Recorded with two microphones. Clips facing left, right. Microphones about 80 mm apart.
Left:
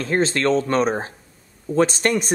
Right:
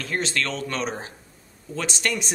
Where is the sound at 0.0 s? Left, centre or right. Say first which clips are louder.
Left 7 dB; left.